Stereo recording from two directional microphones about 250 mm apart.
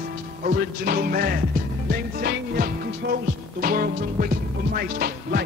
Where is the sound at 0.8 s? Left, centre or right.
Right.